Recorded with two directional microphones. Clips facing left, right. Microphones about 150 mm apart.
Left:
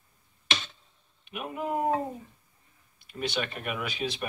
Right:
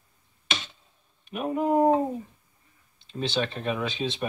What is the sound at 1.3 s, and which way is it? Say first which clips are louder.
Speech: right 7 dB; 40° right (ahead or behind).